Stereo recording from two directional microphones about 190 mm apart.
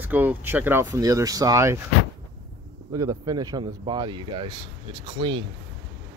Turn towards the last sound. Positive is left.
turn(degrees=-25)  # may be behind; listen again after turning